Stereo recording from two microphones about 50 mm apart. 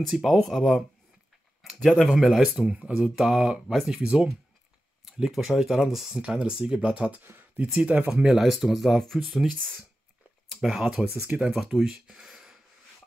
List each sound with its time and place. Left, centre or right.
0.1 s speech: centre
0.6 s speech: centre
2.1 s speech: centre
4.0 s speech: centre
5.2 s speech: centre
6.2 s speech: centre
7.2 s a sound: right
7.9 s speech: right
8.3 s speech: centre